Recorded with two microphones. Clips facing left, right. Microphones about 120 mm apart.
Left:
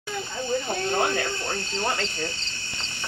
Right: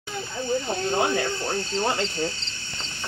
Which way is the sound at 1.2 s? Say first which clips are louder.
Right 2 dB; centre (ahead or behind).